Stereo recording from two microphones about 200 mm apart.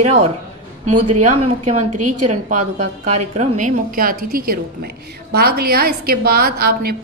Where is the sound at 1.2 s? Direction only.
35° right (ahead or behind).